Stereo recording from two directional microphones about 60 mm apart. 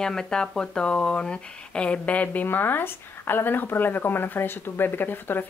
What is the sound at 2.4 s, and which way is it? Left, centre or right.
Speech, left.